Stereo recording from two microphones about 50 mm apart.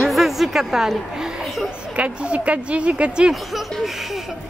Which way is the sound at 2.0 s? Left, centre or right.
Right.